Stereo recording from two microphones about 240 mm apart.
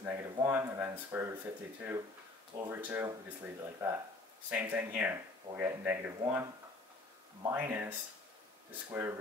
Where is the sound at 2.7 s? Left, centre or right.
Centre.